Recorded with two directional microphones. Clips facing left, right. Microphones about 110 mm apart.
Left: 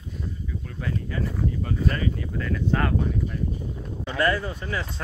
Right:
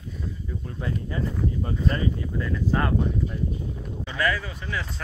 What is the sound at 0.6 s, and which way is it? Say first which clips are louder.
Speech: right 1 dB; 25° right (ahead or behind).